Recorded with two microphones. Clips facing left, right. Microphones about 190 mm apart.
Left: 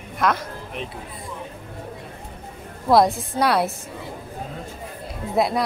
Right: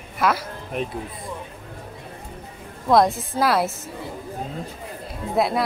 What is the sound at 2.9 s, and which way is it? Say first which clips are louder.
Speech: left 1 dB; centre (ahead or behind).